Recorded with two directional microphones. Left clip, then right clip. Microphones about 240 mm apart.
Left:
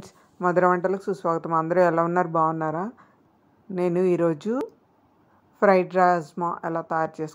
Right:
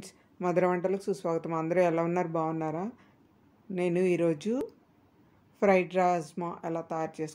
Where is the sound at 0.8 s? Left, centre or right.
Centre.